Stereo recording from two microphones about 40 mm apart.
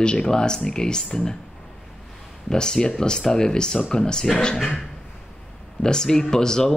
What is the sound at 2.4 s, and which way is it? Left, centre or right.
Speech, centre.